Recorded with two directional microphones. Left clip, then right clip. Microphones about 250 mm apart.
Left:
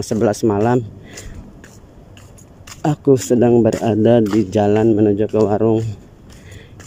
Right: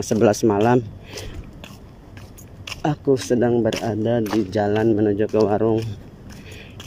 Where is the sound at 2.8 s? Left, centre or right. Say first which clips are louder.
Left 5 dB; centre.